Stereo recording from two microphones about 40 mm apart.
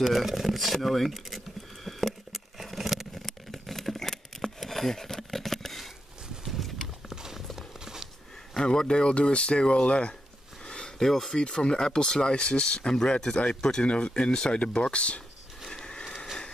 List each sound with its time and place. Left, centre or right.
0.1 s speech: centre
1.9 s a sound: centre
6.4 s clip-clop: centre
8.6 s speech: left
10.7 s a sound: left
11.1 s speech: centre
11.3 s speech: left
13.8 s speech: left
14.8 s speech: left
15.7 s a sound: left